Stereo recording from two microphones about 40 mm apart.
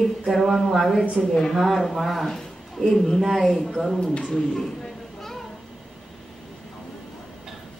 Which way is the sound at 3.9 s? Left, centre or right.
Centre.